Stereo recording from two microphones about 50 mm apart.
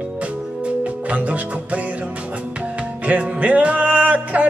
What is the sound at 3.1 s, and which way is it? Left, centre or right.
Music, right.